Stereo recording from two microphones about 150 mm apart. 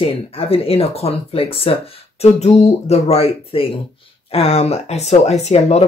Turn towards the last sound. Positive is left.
turn(degrees=45)  # may be behind; listen again after turning